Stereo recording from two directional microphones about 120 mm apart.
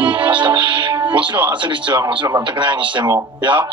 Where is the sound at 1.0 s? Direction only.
40° right (ahead or behind).